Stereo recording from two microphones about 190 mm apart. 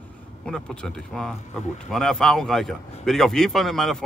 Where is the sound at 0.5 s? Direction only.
5° left (ahead or behind).